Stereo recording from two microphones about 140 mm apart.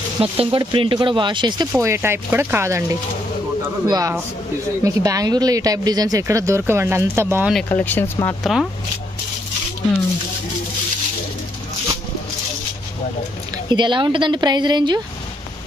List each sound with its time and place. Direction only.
0.2 s a woman's voice: 45° right (ahead or behind)
1.7 s speech: 15° right (ahead or behind)
7.7 s speech: 15° left (ahead or behind)
8.5 s speech: centre (ahead or behind)
13.7 s a woman's voice: 35° right (ahead or behind)